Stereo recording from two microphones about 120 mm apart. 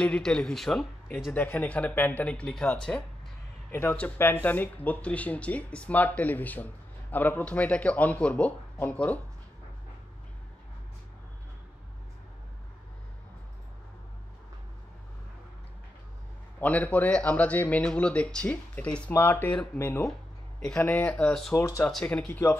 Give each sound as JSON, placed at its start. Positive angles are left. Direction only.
{"t": 0.0, "sound": "speech", "side_deg": 10}
{"t": 16.5, "sound": "speech", "side_deg": 15}
{"t": 21.5, "sound": "speech", "side_deg": 25}
{"t": 21.8, "sound": "speech", "side_deg": 10}